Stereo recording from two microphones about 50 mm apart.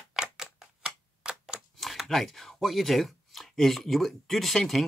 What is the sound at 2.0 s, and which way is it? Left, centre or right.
Speech, centre.